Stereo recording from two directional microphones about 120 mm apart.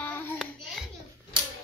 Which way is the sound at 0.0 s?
15° left (ahead or behind).